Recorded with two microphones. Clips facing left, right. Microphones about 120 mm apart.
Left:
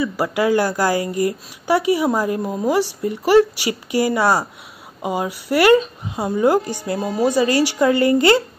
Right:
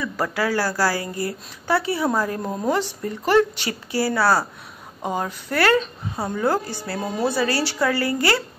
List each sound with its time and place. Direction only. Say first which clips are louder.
0.0 s a woman's voice: left 5 dB; 15° left (ahead or behind)
2.4 s a woman's voice: left 4 dB; 5° left (ahead or behind); by 8.5 s 20° left (ahead or behind)